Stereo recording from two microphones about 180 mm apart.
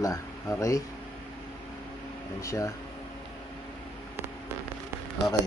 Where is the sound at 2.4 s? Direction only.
15° left (ahead or behind).